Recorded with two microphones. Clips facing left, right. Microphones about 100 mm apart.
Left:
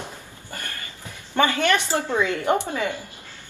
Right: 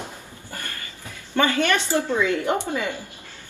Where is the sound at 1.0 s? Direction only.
20° left (ahead or behind).